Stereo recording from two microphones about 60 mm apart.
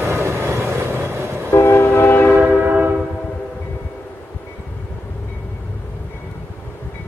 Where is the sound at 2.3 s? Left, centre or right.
Right.